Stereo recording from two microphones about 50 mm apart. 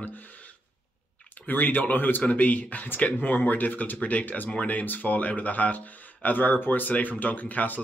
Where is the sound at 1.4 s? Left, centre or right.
Left.